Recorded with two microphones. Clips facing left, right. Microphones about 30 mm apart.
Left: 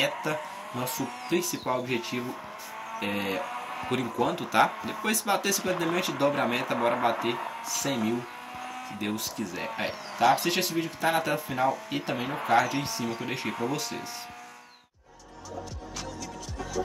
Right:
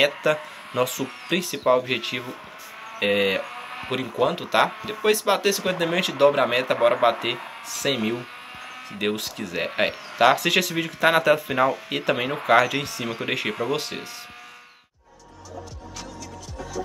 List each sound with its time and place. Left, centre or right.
0.2 s speech: right
1.3 s speech: right
3.0 s speech: right
3.5 s speech: right
5.0 s speech: right
5.9 s speech: right
7.6 s speech: right
8.9 s speech: right
9.2 s speech: right
9.8 s speech: right
11.9 s speech: right
13.7 s speech: right